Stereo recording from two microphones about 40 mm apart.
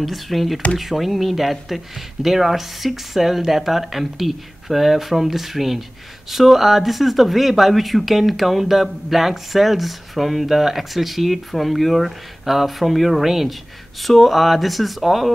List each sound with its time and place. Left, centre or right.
0.0 s speech: centre